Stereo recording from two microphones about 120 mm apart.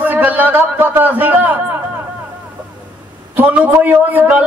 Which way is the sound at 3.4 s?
15° right (ahead or behind).